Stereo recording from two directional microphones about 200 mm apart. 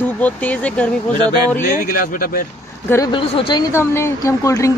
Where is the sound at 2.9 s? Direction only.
20° left (ahead or behind).